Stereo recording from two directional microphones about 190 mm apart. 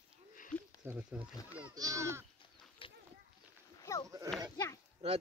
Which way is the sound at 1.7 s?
20° right (ahead or behind).